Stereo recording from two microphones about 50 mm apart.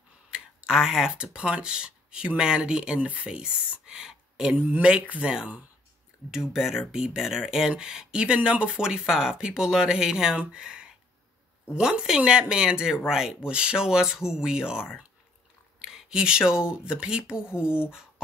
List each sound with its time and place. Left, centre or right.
0.3 s speech: centre
6.3 s speech: centre